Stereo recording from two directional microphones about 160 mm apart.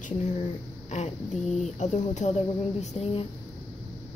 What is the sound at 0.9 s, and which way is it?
Speech, 45° left (ahead or behind).